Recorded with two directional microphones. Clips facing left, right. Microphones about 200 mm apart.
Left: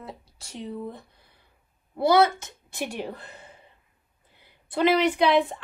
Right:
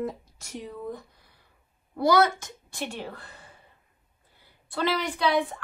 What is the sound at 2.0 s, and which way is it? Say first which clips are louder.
A woman's voice: left 2 dB; 25° left (ahead or behind).